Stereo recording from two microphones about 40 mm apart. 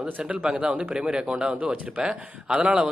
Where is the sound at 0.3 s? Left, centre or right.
Right.